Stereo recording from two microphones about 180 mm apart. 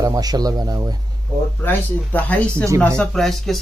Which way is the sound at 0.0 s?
20° right (ahead or behind).